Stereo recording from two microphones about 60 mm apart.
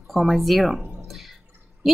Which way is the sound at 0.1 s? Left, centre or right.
Centre.